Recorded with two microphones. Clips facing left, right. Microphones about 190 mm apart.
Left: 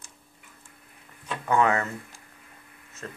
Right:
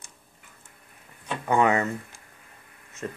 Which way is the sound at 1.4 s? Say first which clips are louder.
Right 1 dB; 20° right (ahead or behind).